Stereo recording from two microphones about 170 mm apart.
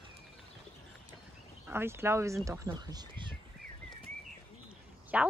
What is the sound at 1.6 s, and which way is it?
A woman's voice, 15° right (ahead or behind).